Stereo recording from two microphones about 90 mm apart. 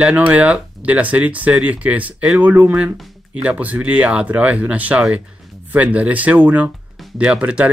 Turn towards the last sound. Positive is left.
turn(degrees=-15)  # may be behind; listen again after turning